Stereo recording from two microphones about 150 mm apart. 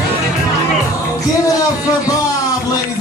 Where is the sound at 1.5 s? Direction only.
25° left (ahead or behind).